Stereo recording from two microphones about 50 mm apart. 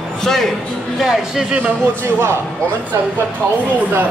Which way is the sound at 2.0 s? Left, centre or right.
Right.